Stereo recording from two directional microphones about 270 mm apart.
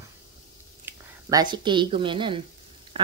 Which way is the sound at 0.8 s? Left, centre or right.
Centre.